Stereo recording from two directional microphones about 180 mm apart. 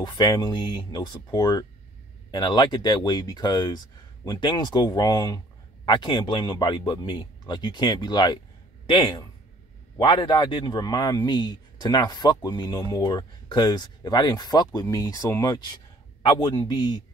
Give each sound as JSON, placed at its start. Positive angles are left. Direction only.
{"t": 0.0, "sound": "speech", "side_deg": 25}